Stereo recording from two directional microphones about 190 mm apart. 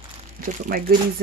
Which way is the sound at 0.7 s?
50° right (ahead or behind).